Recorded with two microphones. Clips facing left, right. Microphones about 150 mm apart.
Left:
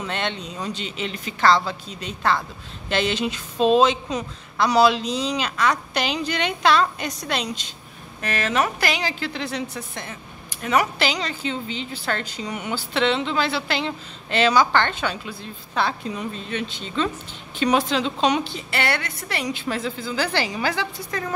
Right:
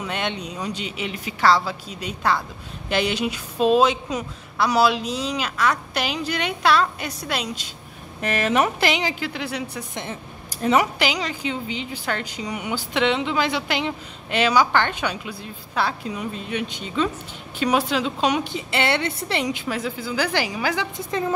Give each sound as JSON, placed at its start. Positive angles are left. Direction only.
{"t": 0.0, "sound": "a woman's voice", "side_deg": -10}
{"t": 19.7, "sound": "a woman's voice", "side_deg": -10}